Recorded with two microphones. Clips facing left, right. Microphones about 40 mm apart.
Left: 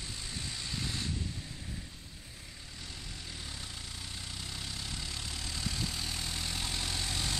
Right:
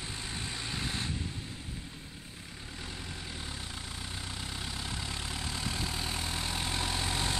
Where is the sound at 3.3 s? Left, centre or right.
Centre.